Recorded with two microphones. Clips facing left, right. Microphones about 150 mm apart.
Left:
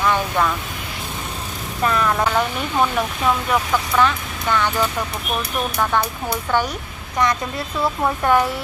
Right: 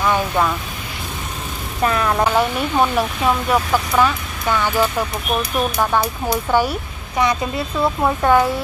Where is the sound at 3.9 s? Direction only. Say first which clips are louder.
Even; 10° right (ahead or behind).